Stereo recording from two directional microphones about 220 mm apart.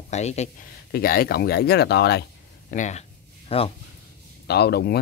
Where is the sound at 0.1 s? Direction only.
30° left (ahead or behind); by 2.2 s 50° left (ahead or behind).